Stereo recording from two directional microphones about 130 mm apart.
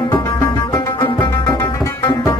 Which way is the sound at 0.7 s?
35° left (ahead or behind).